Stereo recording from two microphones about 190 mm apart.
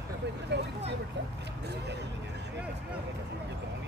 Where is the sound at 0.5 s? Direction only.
65° right (ahead or behind).